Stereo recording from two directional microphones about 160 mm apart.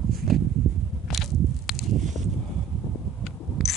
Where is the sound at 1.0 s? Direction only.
Centre (ahead or behind).